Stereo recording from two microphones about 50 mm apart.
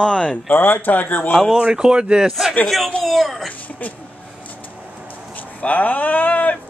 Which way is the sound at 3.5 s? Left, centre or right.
Left.